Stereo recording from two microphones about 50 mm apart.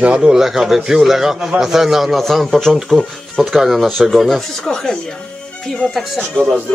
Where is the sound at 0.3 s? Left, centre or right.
Centre.